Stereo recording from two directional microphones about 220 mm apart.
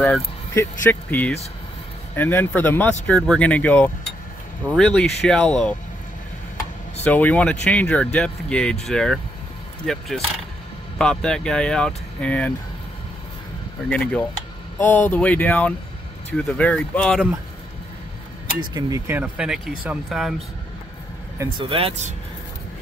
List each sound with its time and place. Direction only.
0.0 s speech: 5° left (ahead or behind)
7.1 s speech: 5° left (ahead or behind)
13.8 s speech: 5° left (ahead or behind)
18.6 s speech: 15° right (ahead or behind); by 20.3 s centre (ahead or behind)
21.4 s speech: 25° right (ahead or behind)